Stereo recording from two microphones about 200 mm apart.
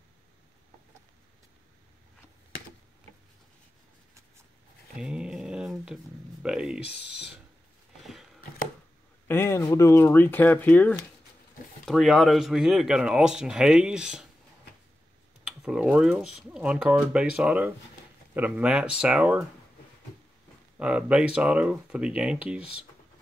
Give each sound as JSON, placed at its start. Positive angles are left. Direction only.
{"t": 4.9, "sound": "a sound", "side_deg": -5}
{"t": 6.4, "sound": "speech", "side_deg": -5}
{"t": 6.8, "sound": "speech", "side_deg": 55}
{"t": 8.0, "sound": "a sound", "side_deg": 0}
{"t": 9.3, "sound": "speech", "side_deg": 10}
{"t": 15.4, "sound": "speech", "side_deg": -5}
{"t": 20.8, "sound": "speech", "side_deg": -5}